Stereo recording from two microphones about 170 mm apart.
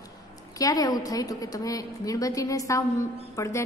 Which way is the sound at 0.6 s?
20° left (ahead or behind).